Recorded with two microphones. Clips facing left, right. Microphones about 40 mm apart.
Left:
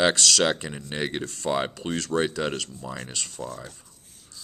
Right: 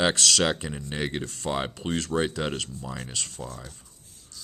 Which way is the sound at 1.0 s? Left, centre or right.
Centre.